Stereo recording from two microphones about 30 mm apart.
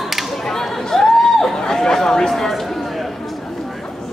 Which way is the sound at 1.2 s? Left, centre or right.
Centre.